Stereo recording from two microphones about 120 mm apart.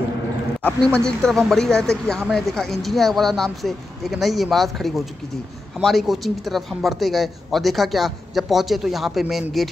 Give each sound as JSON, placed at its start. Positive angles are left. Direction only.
{"t": 0.9, "sound": "a man's voice", "side_deg": 5}